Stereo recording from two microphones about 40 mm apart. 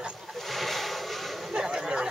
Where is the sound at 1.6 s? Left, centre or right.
Centre.